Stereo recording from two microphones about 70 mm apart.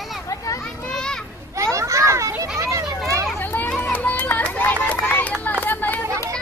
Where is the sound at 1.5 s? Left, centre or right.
Right.